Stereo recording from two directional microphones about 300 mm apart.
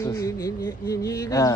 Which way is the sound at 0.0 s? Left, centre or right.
Centre.